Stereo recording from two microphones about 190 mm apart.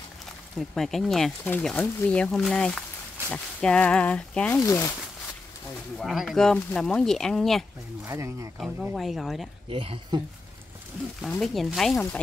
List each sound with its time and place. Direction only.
0.6 s speech: centre (ahead or behind)
5.9 s speech: centre (ahead or behind)
8.0 s speech: 15° right (ahead or behind)
9.7 s speech: 30° right (ahead or behind)
11.1 s speech: centre (ahead or behind)